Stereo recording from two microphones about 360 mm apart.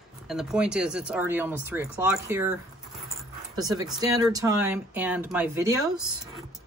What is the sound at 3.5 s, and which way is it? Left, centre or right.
Speech, centre.